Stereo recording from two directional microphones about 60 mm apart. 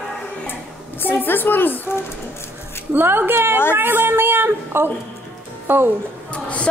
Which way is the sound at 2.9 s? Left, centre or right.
Right.